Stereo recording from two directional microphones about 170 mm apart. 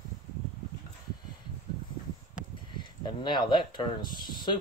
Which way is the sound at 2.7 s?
25° left (ahead or behind).